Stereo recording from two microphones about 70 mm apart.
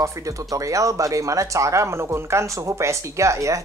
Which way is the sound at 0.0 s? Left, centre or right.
Right.